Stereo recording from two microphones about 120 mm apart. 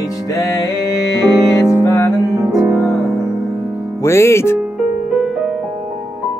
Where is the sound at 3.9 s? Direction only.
20° left (ahead or behind).